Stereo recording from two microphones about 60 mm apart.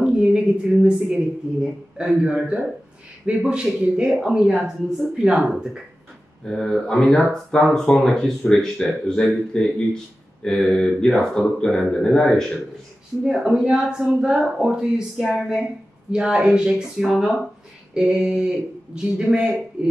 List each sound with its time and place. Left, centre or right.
0.0 s a sound: centre
0.8 s speech: centre
6.4 s speech: centre
13.2 s speech: centre